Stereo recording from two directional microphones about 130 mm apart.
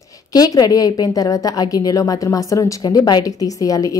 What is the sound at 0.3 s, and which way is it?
A woman's voice, 30° left (ahead or behind).